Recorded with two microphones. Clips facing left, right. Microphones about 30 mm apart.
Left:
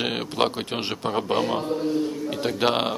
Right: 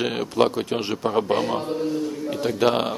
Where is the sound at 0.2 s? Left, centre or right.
Left.